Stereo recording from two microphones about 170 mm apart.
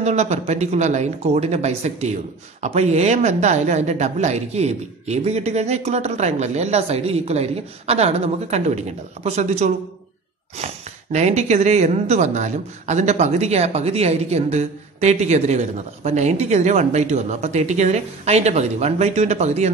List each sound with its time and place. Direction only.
0.0 s speech: 40° right (ahead or behind)